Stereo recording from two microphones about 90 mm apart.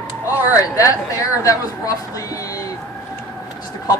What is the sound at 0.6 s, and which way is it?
A woman's voice, 35° left (ahead or behind).